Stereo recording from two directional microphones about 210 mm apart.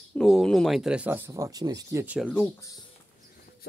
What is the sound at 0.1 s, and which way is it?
Speech, centre (ahead or behind).